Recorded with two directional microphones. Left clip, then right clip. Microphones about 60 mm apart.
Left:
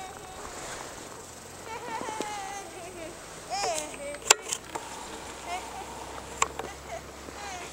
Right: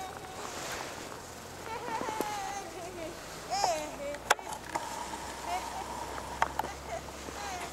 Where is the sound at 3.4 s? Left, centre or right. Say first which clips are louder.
Even; centre.